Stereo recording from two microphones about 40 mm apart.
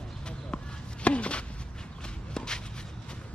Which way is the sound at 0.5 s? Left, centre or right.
Left.